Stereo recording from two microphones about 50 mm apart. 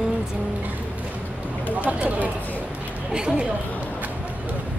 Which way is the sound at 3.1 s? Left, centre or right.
Centre.